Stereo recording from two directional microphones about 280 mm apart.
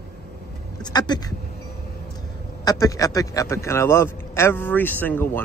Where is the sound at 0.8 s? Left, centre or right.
Centre.